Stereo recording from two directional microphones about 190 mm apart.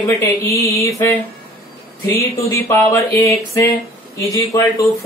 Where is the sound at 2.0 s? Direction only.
15° left (ahead or behind).